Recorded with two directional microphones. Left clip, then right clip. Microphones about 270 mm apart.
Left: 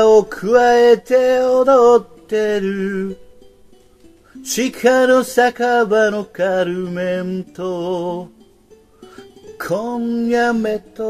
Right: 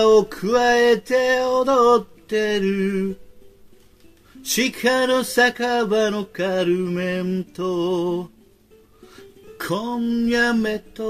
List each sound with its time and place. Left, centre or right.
0.1 s music: centre
4.4 s music: centre
9.6 s music: centre